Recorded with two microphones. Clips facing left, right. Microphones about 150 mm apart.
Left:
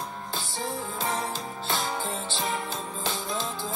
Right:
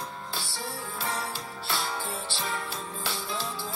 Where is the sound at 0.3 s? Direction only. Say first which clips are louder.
Left 4 dB; 20° left (ahead or behind).